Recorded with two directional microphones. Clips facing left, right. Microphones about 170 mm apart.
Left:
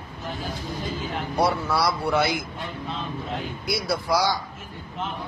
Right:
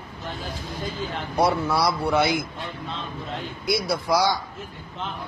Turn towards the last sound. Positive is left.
turn(degrees=-20)  # may be behind; listen again after turning